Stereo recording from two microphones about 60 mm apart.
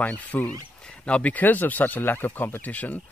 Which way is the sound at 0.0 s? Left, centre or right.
Left.